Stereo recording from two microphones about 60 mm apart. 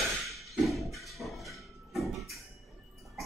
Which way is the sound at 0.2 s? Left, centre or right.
Centre.